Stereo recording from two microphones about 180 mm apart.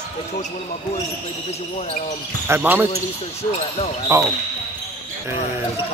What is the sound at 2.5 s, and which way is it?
Speech, 10° right (ahead or behind).